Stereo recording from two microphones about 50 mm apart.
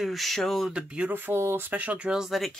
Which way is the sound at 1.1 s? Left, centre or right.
Right.